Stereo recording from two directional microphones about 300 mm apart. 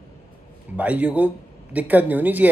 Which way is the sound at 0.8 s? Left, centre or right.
Centre.